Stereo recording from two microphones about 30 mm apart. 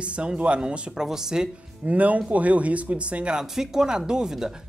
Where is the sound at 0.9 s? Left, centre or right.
Centre.